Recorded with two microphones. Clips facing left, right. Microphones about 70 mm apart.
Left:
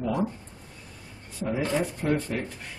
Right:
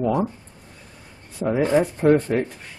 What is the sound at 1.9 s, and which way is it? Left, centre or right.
Speech, right.